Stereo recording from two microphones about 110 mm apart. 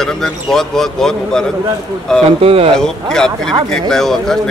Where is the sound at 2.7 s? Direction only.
5° left (ahead or behind).